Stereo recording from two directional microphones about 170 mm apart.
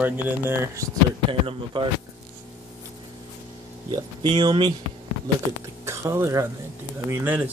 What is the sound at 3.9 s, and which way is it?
Speech, 25° right (ahead or behind).